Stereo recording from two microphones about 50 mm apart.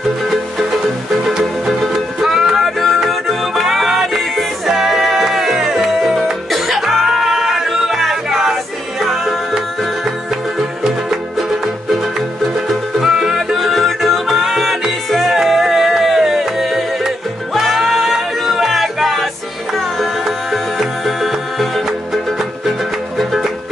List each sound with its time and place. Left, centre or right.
2.3 s music: centre
10.8 s music: centre
13.0 s music: centre
13.7 s music: centre